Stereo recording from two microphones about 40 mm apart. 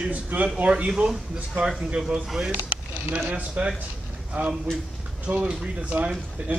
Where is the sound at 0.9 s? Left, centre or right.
Centre.